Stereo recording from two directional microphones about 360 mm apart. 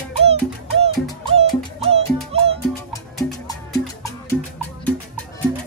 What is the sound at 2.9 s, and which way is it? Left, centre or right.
Music, centre.